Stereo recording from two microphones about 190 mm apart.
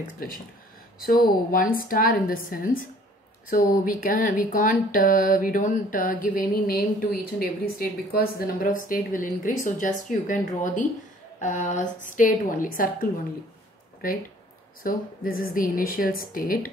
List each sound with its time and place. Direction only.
0.9 s speech: 50° left (ahead or behind)
14.8 s speech: 50° left (ahead or behind)